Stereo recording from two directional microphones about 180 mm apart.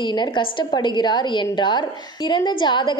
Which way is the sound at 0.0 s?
25° left (ahead or behind).